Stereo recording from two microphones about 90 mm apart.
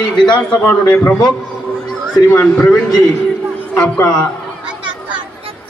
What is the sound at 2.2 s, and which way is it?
Speech, 20° left (ahead or behind).